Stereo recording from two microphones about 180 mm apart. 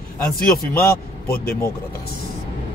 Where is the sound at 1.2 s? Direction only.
55° left (ahead or behind).